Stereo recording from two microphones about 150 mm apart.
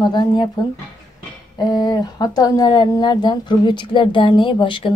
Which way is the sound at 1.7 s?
25° left (ahead or behind).